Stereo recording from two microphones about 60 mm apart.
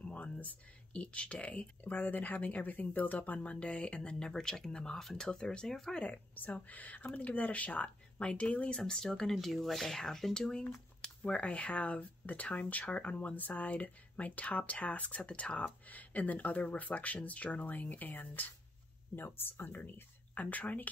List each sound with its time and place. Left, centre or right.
0.0 s a sound: left
0.9 s speech: centre
6.0 s speech: left
15.9 s speech: left